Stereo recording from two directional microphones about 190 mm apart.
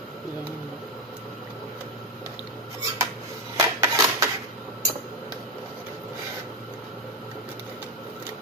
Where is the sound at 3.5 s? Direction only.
20° right (ahead or behind).